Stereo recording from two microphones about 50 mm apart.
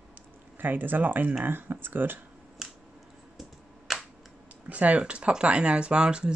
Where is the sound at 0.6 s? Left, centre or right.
Right.